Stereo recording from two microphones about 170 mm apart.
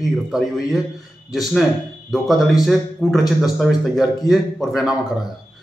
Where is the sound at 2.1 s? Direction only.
Centre (ahead or behind).